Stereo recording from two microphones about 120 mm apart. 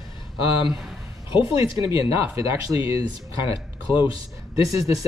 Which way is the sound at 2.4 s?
25° right (ahead or behind).